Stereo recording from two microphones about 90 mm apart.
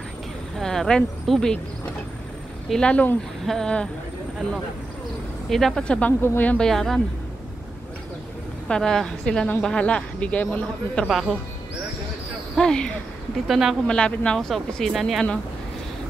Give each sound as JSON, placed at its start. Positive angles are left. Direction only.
{"t": 0.6, "sound": "speech", "side_deg": 5}
{"t": 2.7, "sound": "speech", "side_deg": 10}
{"t": 5.5, "sound": "speech", "side_deg": 5}
{"t": 6.6, "sound": "speech", "side_deg": 5}
{"t": 8.6, "sound": "speech", "side_deg": 5}
{"t": 11.1, "sound": "speech", "side_deg": 0}
{"t": 12.5, "sound": "speech", "side_deg": 10}
{"t": 13.5, "sound": "speech", "side_deg": -5}
{"t": 13.8, "sound": "speech", "side_deg": 10}